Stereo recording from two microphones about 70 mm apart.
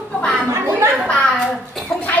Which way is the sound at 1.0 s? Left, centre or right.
Centre.